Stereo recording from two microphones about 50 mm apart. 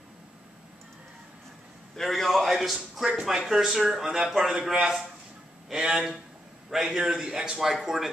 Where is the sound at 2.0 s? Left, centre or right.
Centre.